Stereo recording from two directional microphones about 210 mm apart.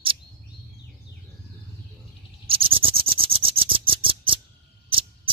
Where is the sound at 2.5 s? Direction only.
25° right (ahead or behind).